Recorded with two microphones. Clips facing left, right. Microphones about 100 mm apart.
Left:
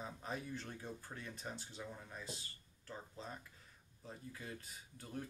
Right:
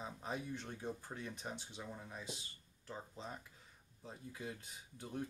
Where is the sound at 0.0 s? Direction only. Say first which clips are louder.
Right 1 dB; 15° right (ahead or behind).